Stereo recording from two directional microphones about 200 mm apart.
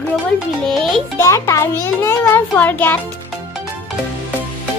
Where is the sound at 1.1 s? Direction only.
15° left (ahead or behind).